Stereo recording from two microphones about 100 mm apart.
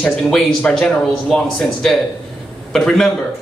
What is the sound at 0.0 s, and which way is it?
A man's voice, 5° left (ahead or behind).